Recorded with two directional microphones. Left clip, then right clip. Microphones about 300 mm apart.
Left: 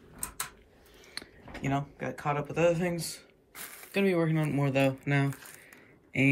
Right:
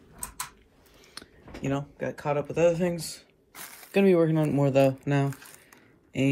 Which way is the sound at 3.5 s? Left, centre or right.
Right.